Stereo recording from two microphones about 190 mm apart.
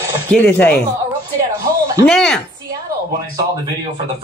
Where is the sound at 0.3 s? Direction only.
10° left (ahead or behind).